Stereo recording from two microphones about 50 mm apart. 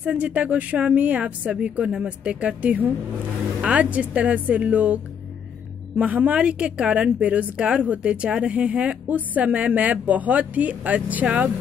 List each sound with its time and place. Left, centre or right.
0.0 s a woman's voice: right
6.4 s speech: right